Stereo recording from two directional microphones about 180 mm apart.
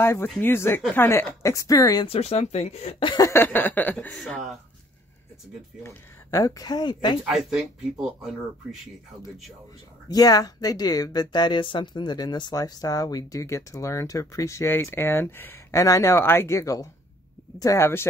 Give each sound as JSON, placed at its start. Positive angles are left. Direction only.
{"t": 0.0, "sound": "speech", "side_deg": 15}
{"t": 2.0, "sound": "speech", "side_deg": 35}
{"t": 5.9, "sound": "speech", "side_deg": 20}
{"t": 7.2, "sound": "speech", "side_deg": 0}
{"t": 10.0, "sound": "speech", "side_deg": 20}